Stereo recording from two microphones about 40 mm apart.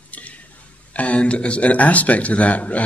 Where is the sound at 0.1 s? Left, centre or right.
Left.